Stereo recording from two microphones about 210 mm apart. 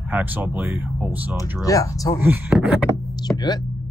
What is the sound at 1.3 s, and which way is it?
Speech, 15° left (ahead or behind).